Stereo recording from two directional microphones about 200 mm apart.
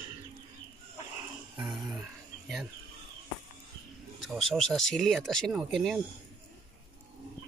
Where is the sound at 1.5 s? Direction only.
5° right (ahead or behind).